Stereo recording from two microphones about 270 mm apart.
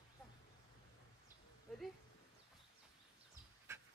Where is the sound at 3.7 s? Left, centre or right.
Centre.